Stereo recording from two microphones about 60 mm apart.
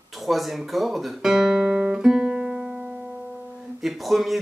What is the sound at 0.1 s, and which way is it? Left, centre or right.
Guitar, centre.